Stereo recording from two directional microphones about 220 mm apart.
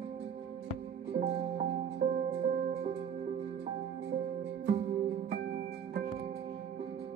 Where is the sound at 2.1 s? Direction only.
30° right (ahead or behind).